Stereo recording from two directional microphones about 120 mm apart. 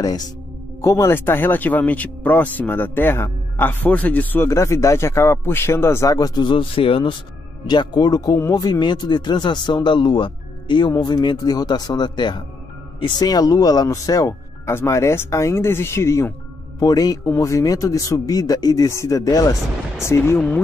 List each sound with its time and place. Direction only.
0.0 s speech: 35° left (ahead or behind)
0.8 s speech: 25° left (ahead or behind); by 7.2 s 45° left (ahead or behind)
7.6 s speech: 35° left (ahead or behind)
16.8 s speech: 30° left (ahead or behind); by 20.6 s 15° left (ahead or behind)